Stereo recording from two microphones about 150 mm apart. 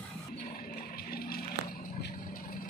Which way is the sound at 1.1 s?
90° left.